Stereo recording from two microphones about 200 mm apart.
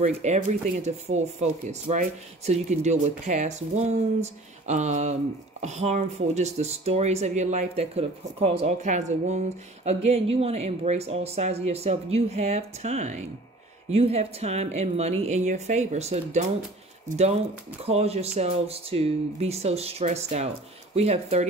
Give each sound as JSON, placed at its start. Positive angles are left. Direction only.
{"t": 0.0, "sound": "speech", "side_deg": -35}
{"t": 17.8, "sound": "speech", "side_deg": -30}